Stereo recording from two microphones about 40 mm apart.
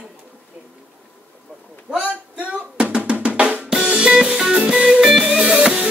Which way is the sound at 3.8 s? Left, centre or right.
Right.